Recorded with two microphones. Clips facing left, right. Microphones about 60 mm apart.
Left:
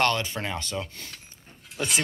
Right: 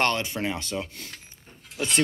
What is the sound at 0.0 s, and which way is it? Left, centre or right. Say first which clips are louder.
Speech: even; right.